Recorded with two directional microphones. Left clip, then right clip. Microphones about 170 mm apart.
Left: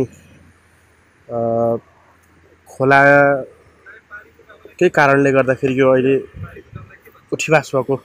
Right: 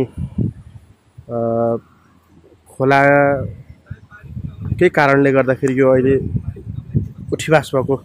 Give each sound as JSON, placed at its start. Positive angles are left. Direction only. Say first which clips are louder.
{"t": 1.3, "sound": "speech", "louder": "even", "side_deg": -25}
{"t": 2.8, "sound": "speech", "louder": "left 2 dB", "side_deg": -15}
{"t": 4.7, "sound": "speech", "louder": "even", "side_deg": -20}
{"t": 7.2, "sound": "speech", "louder": "even", "side_deg": -30}